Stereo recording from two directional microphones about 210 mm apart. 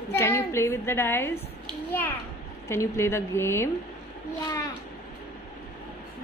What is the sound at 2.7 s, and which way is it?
A woman's voice, 10° left (ahead or behind).